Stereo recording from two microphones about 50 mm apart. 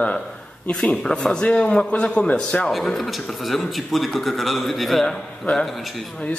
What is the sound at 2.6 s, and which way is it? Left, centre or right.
A man's voice, centre.